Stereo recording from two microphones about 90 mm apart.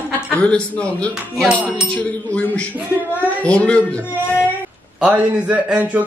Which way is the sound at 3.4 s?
15° left (ahead or behind).